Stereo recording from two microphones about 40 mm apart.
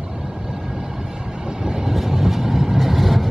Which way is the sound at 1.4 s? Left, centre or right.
Centre.